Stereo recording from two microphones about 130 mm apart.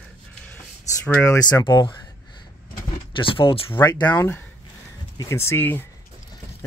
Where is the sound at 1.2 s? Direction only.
25° left (ahead or behind).